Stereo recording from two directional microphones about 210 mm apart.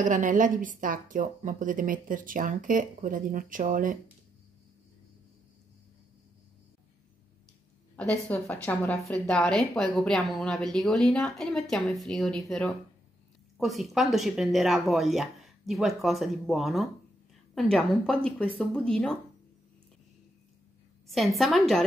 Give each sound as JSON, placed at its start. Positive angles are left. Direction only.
{"t": 0.0, "sound": "a woman's voice", "side_deg": -35}
{"t": 8.3, "sound": "a woman's voice", "side_deg": 10}
{"t": 21.1, "sound": "a woman's voice", "side_deg": 0}